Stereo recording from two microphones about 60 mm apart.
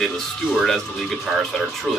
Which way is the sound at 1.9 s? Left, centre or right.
Centre.